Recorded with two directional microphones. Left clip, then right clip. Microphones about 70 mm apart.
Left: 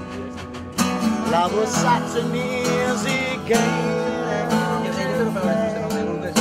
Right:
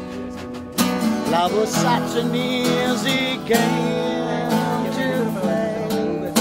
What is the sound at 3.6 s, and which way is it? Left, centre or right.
Music, left.